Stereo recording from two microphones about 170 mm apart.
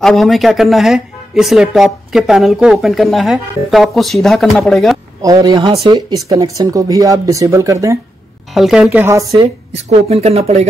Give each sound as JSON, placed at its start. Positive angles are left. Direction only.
{"t": 0.0, "sound": "speech", "side_deg": 0}
{"t": 5.2, "sound": "speech", "side_deg": -25}
{"t": 8.5, "sound": "speech", "side_deg": 0}
{"t": 9.0, "sound": "a woman's voice", "side_deg": -20}
{"t": 9.4, "sound": "speech", "side_deg": -40}